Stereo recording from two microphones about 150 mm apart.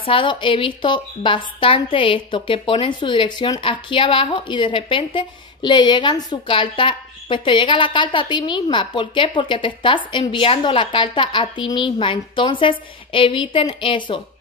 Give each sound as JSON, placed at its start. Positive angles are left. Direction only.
{"t": 0.0, "sound": "a woman's voice", "side_deg": 35}